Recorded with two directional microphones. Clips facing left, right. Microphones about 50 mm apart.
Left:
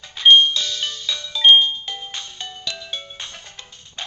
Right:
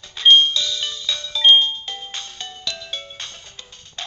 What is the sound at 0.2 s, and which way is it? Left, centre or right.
Music, left.